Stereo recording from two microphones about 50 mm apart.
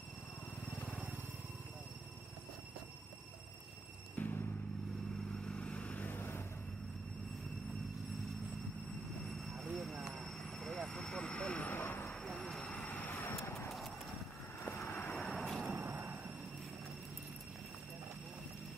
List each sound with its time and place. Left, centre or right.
4.2 s vehicle: left
5.5 s vehicle: left
5.9 s vehicle: left
9.5 s vehicle: centre; by 11.6 s left
11.6 s vehicle: left
12.1 s vehicle: centre
13.0 s vehicle: left
14.8 s vehicle: left
15.0 s vehicle: centre
15.3 s train: centre
15.8 s a sound: right